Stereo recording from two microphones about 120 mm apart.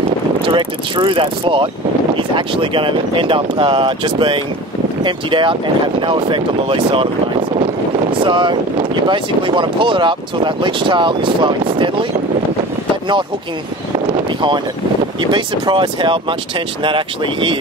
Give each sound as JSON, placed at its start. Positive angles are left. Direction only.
{"t": 0.5, "sound": "speech", "side_deg": -40}
{"t": 15.1, "sound": "speech", "side_deg": -40}